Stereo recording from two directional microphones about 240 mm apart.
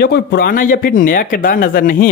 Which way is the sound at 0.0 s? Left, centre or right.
Left.